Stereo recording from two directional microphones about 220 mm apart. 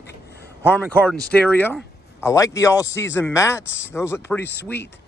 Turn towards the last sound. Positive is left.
turn(degrees=10)  # may be behind; listen again after turning